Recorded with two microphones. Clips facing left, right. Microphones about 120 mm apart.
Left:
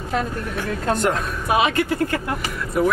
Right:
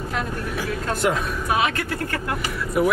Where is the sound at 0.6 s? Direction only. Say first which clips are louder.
Left 3 dB; 5° right (ahead or behind).